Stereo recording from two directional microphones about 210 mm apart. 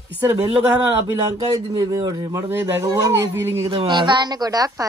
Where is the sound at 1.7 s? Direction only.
20° right (ahead or behind).